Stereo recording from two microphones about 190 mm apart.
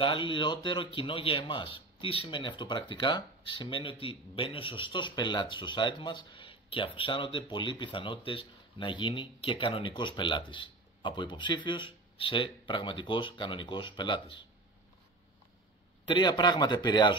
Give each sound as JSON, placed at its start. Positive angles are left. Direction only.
{"t": 0.0, "sound": "speech", "side_deg": 25}
{"t": 16.1, "sound": "speech", "side_deg": 25}